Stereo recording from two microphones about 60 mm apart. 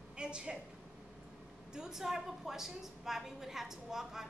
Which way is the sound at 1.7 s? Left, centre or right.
Centre.